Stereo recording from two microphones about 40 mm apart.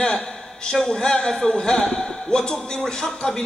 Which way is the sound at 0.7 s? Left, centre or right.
Centre.